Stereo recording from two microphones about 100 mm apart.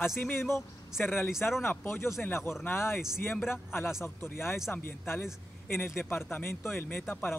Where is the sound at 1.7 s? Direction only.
25° left (ahead or behind).